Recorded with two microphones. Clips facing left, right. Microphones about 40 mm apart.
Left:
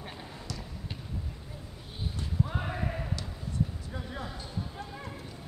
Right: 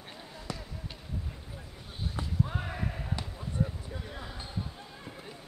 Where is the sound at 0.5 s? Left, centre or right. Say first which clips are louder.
Right 3 dB; right.